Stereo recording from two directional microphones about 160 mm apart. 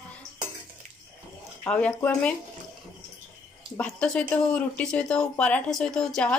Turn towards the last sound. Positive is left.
turn(degrees=5)  # may be behind; listen again after turning